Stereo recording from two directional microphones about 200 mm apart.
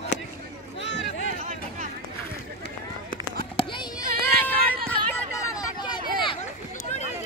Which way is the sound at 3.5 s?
25° left (ahead or behind).